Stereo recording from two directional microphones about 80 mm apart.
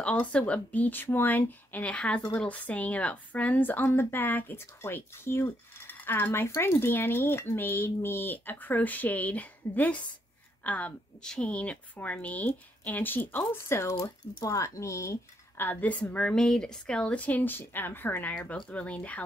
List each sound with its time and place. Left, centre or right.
0.0 s a woman's voice: centre; by 15.1 s left
15.5 s a woman's voice: left